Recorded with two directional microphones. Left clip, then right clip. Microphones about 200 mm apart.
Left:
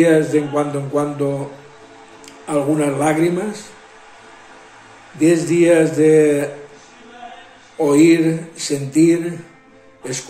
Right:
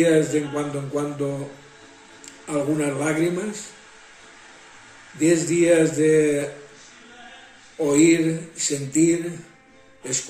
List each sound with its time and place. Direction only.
0.0 s speech: 15° right (ahead or behind)
2.4 s speech: 15° right (ahead or behind)
5.2 s speech: 15° right (ahead or behind)
7.8 s speech: 15° right (ahead or behind)